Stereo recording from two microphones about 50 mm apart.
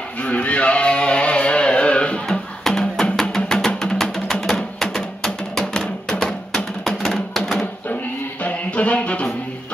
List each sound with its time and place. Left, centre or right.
0.2 s music: left
2.2 s music: centre
8.5 s music: left